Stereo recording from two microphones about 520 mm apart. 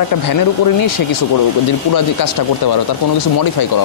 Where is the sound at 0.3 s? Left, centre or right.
Left.